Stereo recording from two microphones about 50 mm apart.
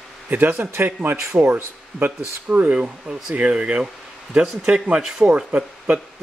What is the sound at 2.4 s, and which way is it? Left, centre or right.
Speech, right.